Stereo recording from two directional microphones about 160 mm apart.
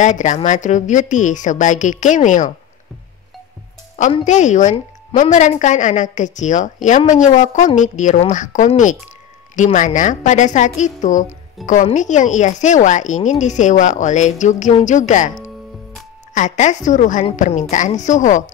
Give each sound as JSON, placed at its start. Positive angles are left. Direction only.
{"t": 0.0, "sound": "speech", "side_deg": 50}
{"t": 4.2, "sound": "a woman's voice", "side_deg": 50}
{"t": 16.3, "sound": "speech", "side_deg": 50}